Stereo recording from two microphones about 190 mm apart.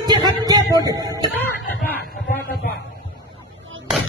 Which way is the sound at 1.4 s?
10° left (ahead or behind).